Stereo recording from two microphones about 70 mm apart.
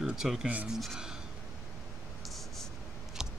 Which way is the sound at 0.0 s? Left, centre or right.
Centre.